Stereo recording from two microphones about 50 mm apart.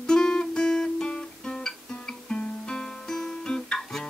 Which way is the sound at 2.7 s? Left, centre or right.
Centre.